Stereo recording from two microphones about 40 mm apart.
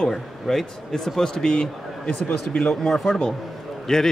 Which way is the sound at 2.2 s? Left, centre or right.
Left.